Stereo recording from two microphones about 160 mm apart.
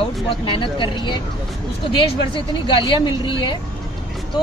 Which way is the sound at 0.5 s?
30° left (ahead or behind).